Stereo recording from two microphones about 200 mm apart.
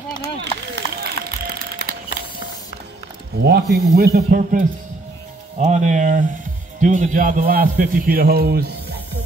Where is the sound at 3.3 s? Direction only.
55° right (ahead or behind).